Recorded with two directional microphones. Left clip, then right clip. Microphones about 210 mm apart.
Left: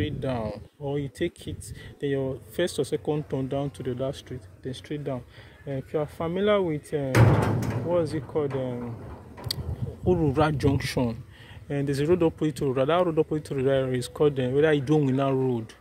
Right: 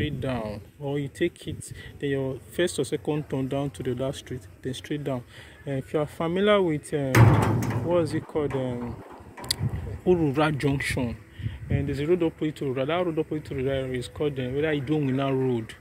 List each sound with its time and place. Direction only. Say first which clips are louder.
0.0 s speech: even; 5° left (ahead or behind)
7.1 s speech: right 1 dB; 30° right (ahead or behind)
7.9 s speech: right 1 dB; centre (ahead or behind)
10.0 s speech: right 1 dB; 5° left (ahead or behind)
11.7 s speech: left 1 dB; 25° left (ahead or behind); by 15.7 s 10° left (ahead or behind)